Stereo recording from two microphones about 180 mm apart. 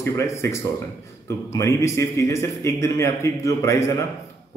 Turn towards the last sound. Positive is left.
turn(degrees=15)  # may be behind; listen again after turning